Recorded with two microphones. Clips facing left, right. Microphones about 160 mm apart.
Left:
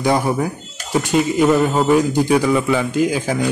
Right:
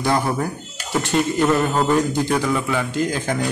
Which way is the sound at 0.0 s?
10° left (ahead or behind).